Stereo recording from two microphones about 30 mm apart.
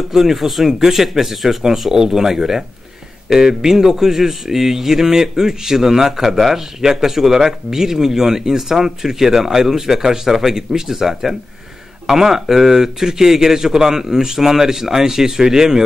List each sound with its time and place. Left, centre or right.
0.1 s speech: centre